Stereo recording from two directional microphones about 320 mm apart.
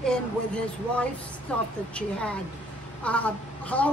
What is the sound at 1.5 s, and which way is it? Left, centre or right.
Speech, centre.